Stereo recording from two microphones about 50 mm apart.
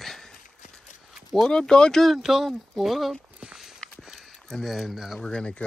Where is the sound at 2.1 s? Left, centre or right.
Centre.